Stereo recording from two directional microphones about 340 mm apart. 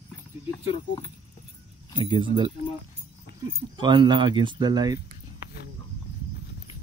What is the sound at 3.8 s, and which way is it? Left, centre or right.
Speech, centre.